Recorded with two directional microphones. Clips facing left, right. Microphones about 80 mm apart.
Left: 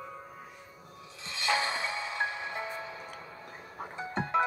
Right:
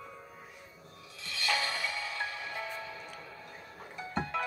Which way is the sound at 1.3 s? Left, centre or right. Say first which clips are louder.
Left 3 dB; left.